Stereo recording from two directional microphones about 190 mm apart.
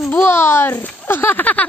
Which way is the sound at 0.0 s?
10° left (ahead or behind).